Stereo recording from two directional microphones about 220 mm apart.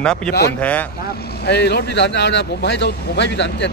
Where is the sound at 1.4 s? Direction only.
50° left (ahead or behind).